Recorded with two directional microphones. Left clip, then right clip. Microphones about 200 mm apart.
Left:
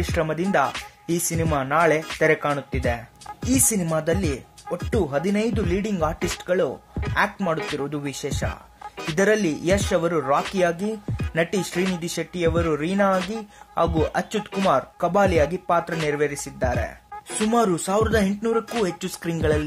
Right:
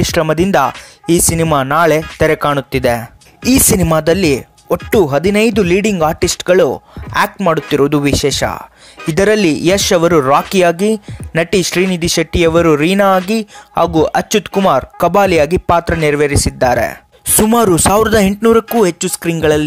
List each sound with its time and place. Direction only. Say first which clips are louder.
0.1 s speech: right 9 dB; 35° right (ahead or behind)
7.7 s speech: right 17 dB; 40° right (ahead or behind)
18.8 s speech: right 12 dB; 30° right (ahead or behind)